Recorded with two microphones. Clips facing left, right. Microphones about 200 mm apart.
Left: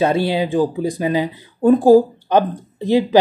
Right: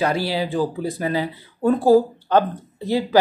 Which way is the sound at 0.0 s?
25° left (ahead or behind).